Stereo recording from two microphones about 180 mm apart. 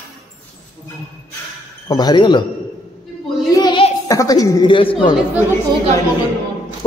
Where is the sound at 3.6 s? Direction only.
25° left (ahead or behind).